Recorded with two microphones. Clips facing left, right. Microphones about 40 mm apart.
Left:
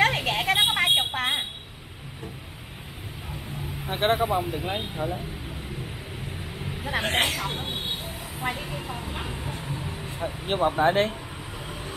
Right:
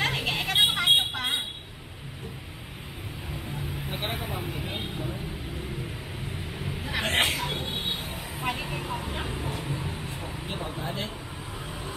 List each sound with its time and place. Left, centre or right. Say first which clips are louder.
0.0 s vehicle: left 5 dB; left
3.8 s speech: left 12 dB; left
6.8 s vehicle: left 1 dB; left
7.3 s speech: left 1 dB; left
7.7 s vehicle: even; right
10.2 s speech: left 14 dB; left